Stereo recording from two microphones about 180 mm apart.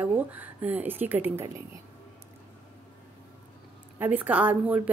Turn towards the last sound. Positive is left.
turn(degrees=-10)  # may be behind; listen again after turning